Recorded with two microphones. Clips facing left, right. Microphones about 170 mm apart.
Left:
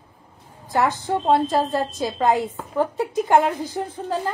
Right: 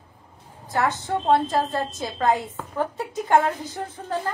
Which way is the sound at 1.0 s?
20° left (ahead or behind).